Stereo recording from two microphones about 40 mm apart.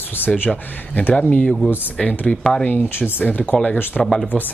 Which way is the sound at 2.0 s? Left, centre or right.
Left.